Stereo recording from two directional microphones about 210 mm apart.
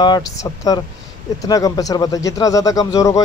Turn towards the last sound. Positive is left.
turn(degrees=15)  # may be behind; listen again after turning